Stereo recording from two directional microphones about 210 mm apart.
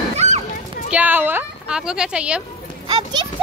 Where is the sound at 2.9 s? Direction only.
20° right (ahead or behind).